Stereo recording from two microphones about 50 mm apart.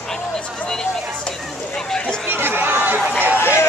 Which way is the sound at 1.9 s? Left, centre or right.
Centre.